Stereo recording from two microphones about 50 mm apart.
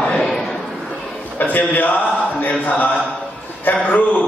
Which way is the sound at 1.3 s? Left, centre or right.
Left.